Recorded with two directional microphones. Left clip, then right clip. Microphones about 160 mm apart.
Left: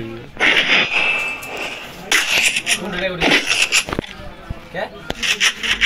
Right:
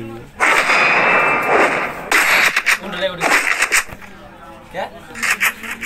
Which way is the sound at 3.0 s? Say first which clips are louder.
Even; 25° right (ahead or behind).